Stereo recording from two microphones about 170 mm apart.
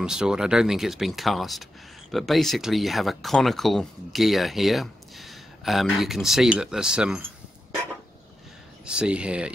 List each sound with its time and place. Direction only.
0.0 s speech: 5° right (ahead or behind)
8.8 s speech: 5° right (ahead or behind)